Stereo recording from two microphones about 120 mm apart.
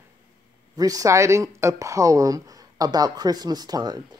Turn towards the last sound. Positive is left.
turn(degrees=-35)  # may be behind; listen again after turning